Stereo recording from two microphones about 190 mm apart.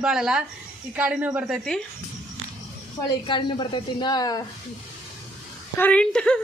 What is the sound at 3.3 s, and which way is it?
Speech, 25° left (ahead or behind).